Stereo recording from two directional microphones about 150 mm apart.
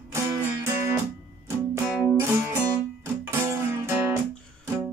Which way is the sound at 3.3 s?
20° right (ahead or behind).